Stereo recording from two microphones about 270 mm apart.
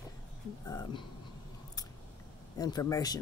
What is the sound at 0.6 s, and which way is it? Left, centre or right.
Speech, centre.